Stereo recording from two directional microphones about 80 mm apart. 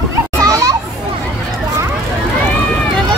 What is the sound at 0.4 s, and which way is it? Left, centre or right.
Children playing, right.